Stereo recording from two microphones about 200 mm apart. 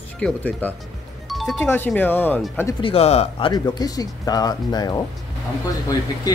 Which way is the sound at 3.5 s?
20° left (ahead or behind).